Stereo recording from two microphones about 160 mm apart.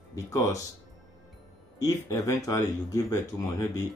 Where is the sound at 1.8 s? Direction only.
20° left (ahead or behind).